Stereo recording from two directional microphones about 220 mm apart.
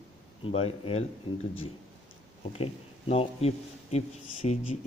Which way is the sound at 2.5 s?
25° left (ahead or behind).